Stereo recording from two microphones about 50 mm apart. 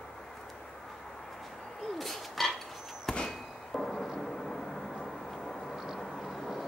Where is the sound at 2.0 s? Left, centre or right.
Centre.